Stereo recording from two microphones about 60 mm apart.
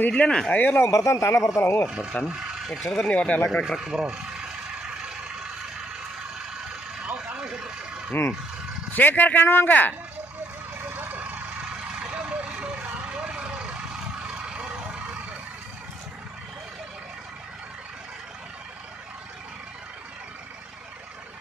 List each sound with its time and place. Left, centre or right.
0.1 s speech: centre
0.5 s speech: left
0.7 s speech: left
1.9 s speech: centre
2.8 s speech: centre
3.1 s speech: left
3.8 s vehicle: centre
7.3 s vehicle: centre
8.9 s speech: left
9.7 s speech: left
10.8 s vehicle: right